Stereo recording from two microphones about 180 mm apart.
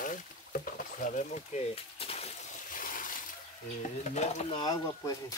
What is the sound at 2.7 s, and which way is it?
Splash, 50° left (ahead or behind).